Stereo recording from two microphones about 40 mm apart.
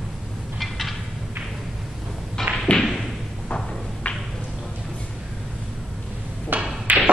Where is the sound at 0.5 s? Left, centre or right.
Centre.